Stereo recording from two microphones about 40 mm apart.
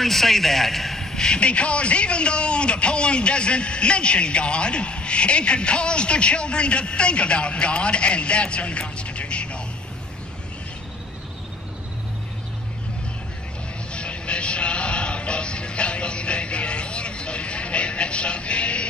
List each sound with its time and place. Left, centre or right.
0.0 s a man's voice: centre
1.2 s a man's voice: left
13.9 s music: left